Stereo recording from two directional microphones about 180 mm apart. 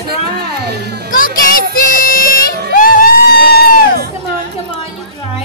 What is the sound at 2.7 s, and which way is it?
Crowd, 50° left (ahead or behind).